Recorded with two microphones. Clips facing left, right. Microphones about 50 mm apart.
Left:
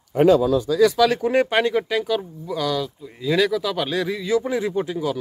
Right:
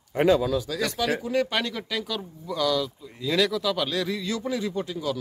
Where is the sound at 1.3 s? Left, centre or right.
Left.